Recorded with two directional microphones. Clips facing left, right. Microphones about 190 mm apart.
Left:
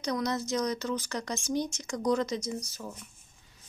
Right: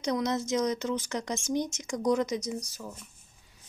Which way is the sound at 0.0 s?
20° right (ahead or behind).